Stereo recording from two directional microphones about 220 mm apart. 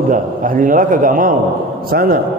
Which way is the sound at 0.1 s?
40° right (ahead or behind).